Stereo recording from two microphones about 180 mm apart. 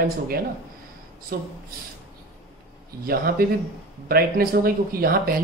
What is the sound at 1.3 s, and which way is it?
Speech, 55° right (ahead or behind).